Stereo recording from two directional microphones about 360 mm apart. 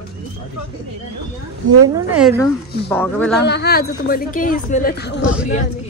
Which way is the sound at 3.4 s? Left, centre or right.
Left.